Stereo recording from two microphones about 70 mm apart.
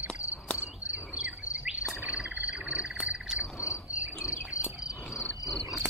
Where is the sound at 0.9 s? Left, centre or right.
Centre.